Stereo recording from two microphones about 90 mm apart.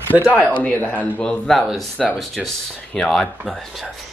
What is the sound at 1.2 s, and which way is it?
Speech, 10° left (ahead or behind).